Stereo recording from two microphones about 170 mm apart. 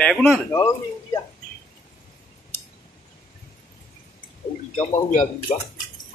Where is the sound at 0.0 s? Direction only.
Centre (ahead or behind).